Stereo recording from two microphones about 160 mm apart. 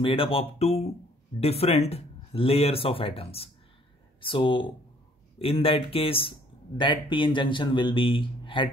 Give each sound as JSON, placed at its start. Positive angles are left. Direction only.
{"t": 0.0, "sound": "speech", "side_deg": 35}